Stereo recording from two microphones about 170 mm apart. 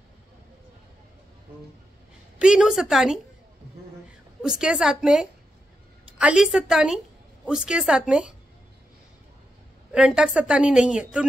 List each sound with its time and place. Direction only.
2.3 s a woman's voice: 5° right (ahead or behind)
4.4 s a woman's voice: 5° right (ahead or behind)
9.9 s a woman's voice: 5° right (ahead or behind)